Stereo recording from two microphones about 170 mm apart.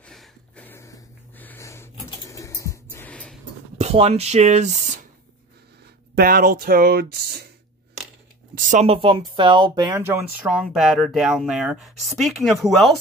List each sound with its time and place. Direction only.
0.0 s snort: 5° left (ahead or behind)
2.0 s a sound: 20° left (ahead or behind)
3.7 s speech: 35° right (ahead or behind)
6.1 s speech: 60° right (ahead or behind)
8.5 s speech: 50° right (ahead or behind)
8.8 s speech: 35° right (ahead or behind)
9.9 s speech: 15° right (ahead or behind)